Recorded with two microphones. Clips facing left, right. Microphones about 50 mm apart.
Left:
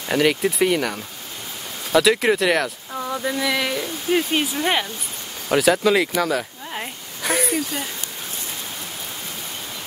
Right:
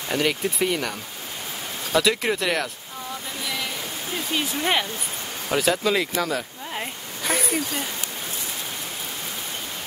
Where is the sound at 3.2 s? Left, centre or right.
Left.